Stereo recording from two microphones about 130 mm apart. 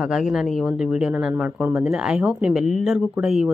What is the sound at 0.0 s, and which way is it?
Speech, 5° right (ahead or behind).